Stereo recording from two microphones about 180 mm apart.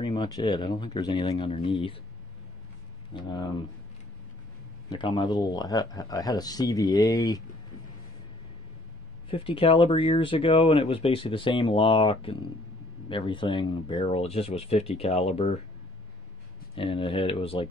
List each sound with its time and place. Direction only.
0.0 s speech: 25° left (ahead or behind)
3.1 s speech: 25° left (ahead or behind)
4.8 s speech: 25° left (ahead or behind)
9.3 s speech: 30° left (ahead or behind)
16.7 s speech: 30° left (ahead or behind)